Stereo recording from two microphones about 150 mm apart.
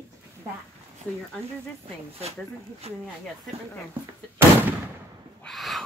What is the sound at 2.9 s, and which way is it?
Speech, 45° right (ahead or behind).